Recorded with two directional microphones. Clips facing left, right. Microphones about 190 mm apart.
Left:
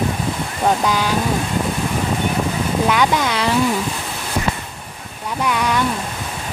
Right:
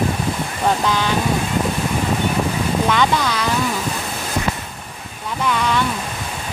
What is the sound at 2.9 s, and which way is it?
Speech, 15° left (ahead or behind).